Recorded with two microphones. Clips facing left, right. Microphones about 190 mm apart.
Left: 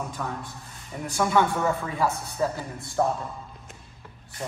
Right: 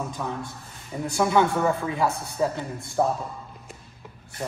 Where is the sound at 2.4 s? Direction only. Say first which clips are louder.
Right 2 dB; centre (ahead or behind).